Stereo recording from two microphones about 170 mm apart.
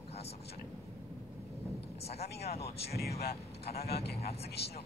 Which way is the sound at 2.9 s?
65° left (ahead or behind).